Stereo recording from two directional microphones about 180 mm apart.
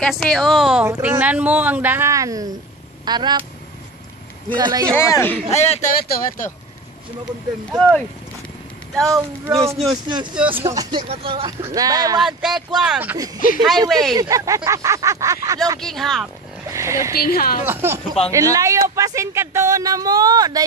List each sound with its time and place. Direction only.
0.0 s speech: 5° left (ahead or behind)
0.8 s speech: 15° right (ahead or behind)
4.5 s speech: 25° right (ahead or behind)
4.9 s speech: 10° left (ahead or behind)
5.5 s speech: 40° left (ahead or behind)
5.9 s speech: 55° left (ahead or behind)
7.2 s speech: centre (ahead or behind)
9.5 s speech: 15° right (ahead or behind)
12.2 s speech: centre (ahead or behind)
14.1 s speech: 20° right (ahead or behind)
15.8 s speech: centre (ahead or behind)
16.7 s speech: 15° right (ahead or behind)
17.1 s a woman's voice: 55° left (ahead or behind)
17.6 s speech: 15° right (ahead or behind)